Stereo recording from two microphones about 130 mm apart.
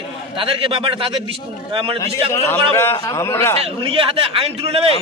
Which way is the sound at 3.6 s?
45° right (ahead or behind).